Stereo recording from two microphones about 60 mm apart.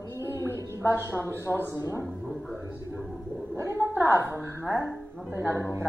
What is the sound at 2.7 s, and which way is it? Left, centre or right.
Speech, right.